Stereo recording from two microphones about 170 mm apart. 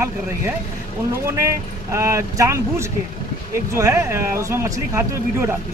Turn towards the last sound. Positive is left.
turn(degrees=-15)  # may be behind; listen again after turning